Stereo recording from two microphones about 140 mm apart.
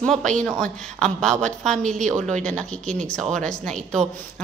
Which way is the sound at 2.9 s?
60° right (ahead or behind).